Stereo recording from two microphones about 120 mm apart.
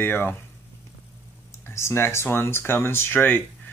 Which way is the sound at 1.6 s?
20° left (ahead or behind).